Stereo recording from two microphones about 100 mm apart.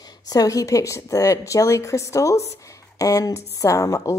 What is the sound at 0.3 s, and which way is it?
A woman's voice, 35° left (ahead or behind).